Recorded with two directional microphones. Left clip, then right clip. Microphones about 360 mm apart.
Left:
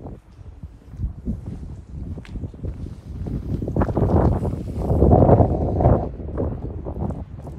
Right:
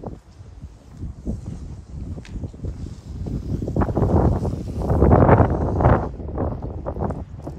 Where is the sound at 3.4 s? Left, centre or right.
Centre.